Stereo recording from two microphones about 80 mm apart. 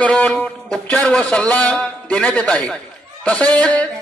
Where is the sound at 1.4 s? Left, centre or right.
Centre.